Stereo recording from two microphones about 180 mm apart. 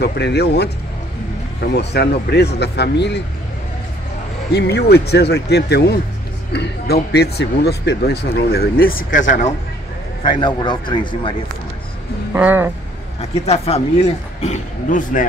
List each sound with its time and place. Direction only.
0.0 s speech: 70° left (ahead or behind)
1.7 s speech: 65° left (ahead or behind)
4.5 s speech: 65° left (ahead or behind); by 9.5 s 45° left (ahead or behind)
10.2 s a man's voice: 25° left (ahead or behind)
12.4 s speech: 10° right (ahead or behind)
13.2 s speech: 35° left (ahead or behind)